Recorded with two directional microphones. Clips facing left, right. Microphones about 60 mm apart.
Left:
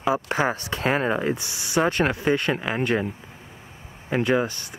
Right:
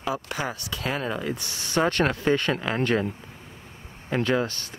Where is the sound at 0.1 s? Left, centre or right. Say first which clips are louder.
Left 7 dB; left.